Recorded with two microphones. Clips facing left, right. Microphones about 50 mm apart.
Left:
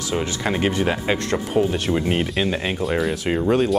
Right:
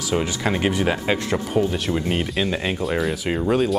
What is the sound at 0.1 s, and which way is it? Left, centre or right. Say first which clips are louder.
Speech: right 1 dB; centre.